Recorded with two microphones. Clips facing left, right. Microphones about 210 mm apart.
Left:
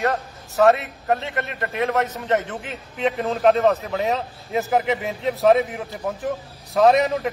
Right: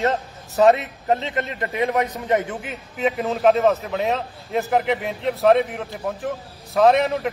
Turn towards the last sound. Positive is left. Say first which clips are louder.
# even
turn(degrees=0)  # may be behind; listen again after turning